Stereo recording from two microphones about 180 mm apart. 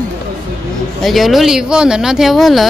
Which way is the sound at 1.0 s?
Centre (ahead or behind).